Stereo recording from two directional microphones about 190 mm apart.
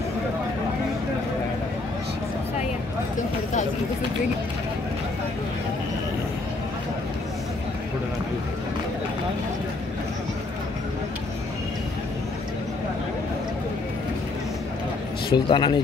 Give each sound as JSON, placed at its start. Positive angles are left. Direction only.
{"t": 15.3, "sound": "speech", "side_deg": 25}